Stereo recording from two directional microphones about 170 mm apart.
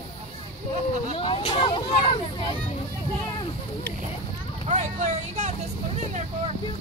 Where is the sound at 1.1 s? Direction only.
30° left (ahead or behind).